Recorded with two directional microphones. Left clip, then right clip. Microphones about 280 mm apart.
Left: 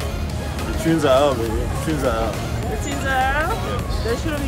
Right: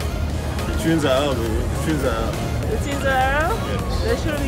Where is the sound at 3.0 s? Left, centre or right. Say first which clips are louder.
Right 1 dB; centre.